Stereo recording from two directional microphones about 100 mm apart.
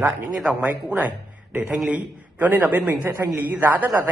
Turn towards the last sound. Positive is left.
turn(degrees=-20)  # may be behind; listen again after turning